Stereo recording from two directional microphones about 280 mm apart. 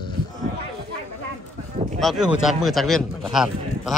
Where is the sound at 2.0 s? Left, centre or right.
Centre.